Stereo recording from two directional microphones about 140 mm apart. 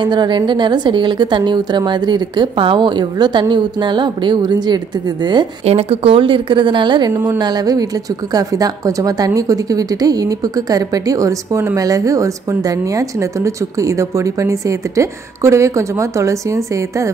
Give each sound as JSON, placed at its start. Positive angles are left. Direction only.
{"t": 0.0, "sound": "a woman's voice", "side_deg": -35}
{"t": 5.7, "sound": "a woman's voice", "side_deg": -45}